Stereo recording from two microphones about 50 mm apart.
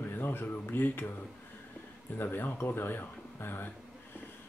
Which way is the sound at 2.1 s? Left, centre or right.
Left.